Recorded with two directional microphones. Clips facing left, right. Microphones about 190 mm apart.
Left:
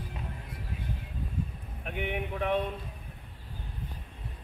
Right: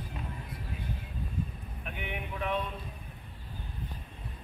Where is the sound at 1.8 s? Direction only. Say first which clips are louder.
Left 6 dB; 60° left (ahead or behind).